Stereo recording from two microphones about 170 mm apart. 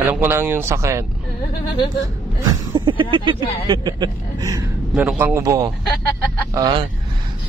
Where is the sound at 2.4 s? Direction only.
30° right (ahead or behind).